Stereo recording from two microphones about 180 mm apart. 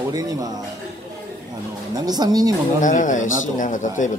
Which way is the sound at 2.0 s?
20° right (ahead or behind).